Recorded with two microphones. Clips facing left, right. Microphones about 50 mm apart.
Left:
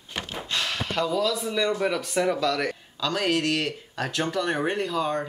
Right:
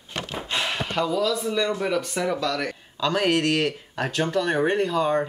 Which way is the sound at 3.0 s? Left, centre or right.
Centre.